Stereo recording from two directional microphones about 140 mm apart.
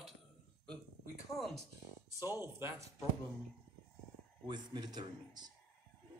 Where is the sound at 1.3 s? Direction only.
Centre (ahead or behind).